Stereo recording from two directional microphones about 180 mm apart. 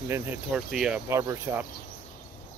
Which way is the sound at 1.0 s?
15° right (ahead or behind).